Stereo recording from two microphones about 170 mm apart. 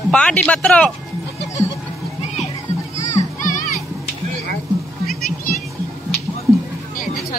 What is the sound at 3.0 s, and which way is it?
Children playing, 45° left (ahead or behind).